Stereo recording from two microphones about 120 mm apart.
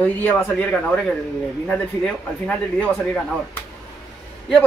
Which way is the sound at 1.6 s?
10° left (ahead or behind).